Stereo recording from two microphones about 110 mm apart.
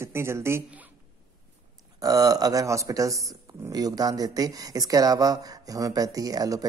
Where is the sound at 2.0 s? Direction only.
35° right (ahead or behind).